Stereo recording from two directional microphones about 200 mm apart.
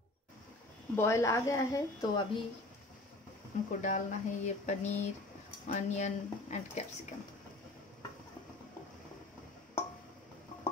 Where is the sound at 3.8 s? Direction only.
40° left (ahead or behind).